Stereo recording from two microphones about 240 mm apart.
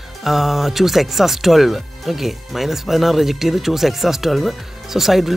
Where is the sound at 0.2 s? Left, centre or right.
Centre.